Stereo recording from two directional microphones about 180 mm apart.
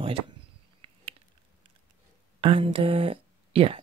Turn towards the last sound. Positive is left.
turn(degrees=-30)  # may be behind; listen again after turning